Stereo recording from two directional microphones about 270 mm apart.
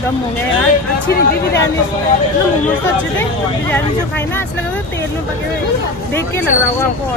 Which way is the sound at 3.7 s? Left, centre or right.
Centre.